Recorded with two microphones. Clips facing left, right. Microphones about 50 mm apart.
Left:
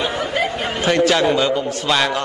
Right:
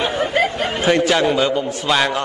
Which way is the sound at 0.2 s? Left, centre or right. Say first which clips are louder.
Right 3 dB; right.